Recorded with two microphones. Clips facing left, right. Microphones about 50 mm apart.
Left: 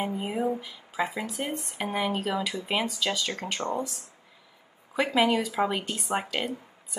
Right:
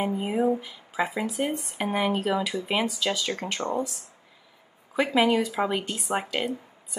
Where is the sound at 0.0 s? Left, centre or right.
Centre.